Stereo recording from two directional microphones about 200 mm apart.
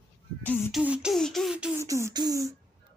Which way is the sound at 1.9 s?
15° right (ahead or behind).